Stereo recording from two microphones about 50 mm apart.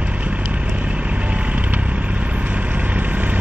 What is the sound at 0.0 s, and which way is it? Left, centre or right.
Vehicle, right.